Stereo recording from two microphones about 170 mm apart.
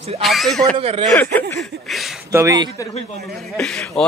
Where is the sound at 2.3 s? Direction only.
20° right (ahead or behind).